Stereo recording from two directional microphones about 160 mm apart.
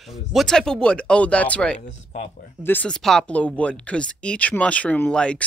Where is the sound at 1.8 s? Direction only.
50° left (ahead or behind).